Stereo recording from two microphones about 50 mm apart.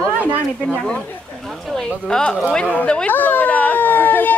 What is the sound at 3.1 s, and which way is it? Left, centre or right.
Speech, left.